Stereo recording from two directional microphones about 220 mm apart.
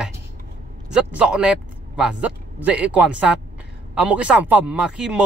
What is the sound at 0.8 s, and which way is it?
Speech, 5° right (ahead or behind).